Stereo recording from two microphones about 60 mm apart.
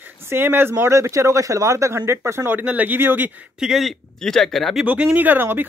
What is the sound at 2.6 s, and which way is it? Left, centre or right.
Speech, right.